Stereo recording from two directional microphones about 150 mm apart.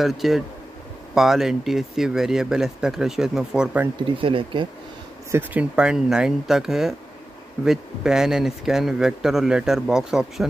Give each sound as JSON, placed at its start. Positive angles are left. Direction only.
{"t": 0.0, "sound": "speech", "side_deg": 0}
{"t": 4.2, "sound": "speech", "side_deg": -35}
{"t": 5.3, "sound": "speech", "side_deg": -10}